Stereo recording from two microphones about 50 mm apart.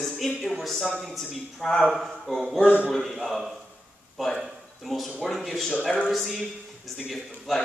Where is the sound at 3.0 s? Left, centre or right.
Centre.